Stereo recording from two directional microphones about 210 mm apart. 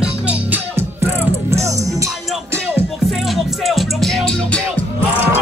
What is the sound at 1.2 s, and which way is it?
Music, 10° right (ahead or behind).